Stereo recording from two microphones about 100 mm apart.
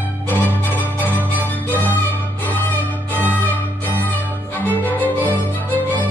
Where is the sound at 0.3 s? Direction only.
20° left (ahead or behind).